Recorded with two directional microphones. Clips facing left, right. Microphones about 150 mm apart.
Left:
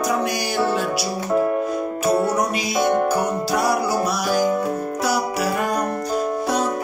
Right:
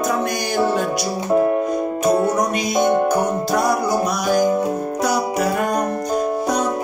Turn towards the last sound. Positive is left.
turn(degrees=5)  # may be behind; listen again after turning